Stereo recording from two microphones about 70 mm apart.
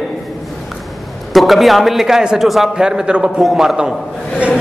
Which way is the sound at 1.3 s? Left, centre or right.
Centre.